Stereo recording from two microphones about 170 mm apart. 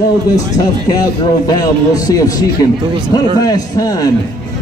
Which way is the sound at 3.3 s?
20° left (ahead or behind).